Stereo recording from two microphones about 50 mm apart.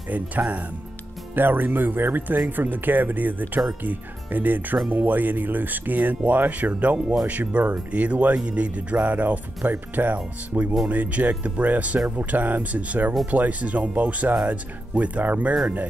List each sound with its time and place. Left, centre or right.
0.1 s speech: right
1.3 s speech: right
10.9 s speech: right